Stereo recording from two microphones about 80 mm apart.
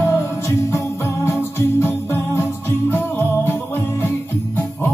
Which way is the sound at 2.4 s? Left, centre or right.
Left.